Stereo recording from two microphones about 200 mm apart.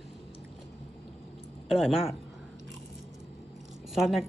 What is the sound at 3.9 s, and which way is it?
Speech, centre (ahead or behind).